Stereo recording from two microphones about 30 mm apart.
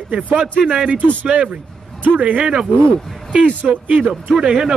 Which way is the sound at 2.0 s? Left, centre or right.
Right.